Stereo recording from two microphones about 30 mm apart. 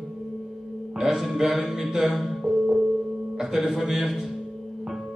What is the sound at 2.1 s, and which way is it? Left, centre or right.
Music, centre.